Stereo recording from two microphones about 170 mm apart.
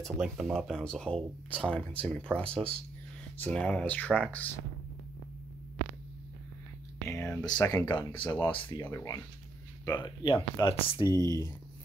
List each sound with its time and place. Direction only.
0.0 s speech: centre (ahead or behind)
7.1 s speech: 15° left (ahead or behind)
8.5 s speech: 15° left (ahead or behind)
9.9 s speech: 25° left (ahead or behind)
10.7 s speech: 30° left (ahead or behind)
11.2 s speech: 20° left (ahead or behind)